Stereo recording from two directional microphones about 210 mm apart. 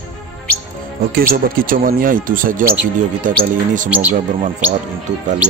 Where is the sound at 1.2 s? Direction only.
45° right (ahead or behind).